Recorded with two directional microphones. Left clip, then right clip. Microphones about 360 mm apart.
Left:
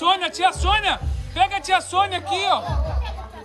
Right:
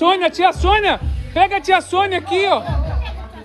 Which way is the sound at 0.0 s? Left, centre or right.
Centre.